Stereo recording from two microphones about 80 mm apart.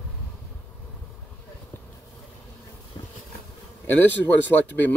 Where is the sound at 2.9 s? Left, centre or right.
Left.